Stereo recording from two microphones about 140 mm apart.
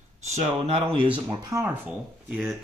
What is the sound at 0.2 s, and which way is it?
Speech, 50° right (ahead or behind).